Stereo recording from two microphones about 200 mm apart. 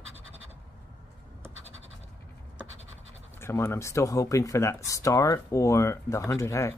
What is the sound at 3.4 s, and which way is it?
Speech, 15° left (ahead or behind).